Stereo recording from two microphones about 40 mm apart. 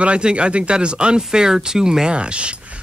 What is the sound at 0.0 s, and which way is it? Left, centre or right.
A man's voice, right.